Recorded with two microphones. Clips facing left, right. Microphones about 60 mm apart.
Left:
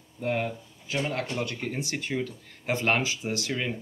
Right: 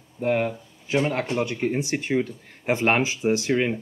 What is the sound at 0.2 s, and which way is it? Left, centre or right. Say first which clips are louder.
Speech: right 6 dB; right.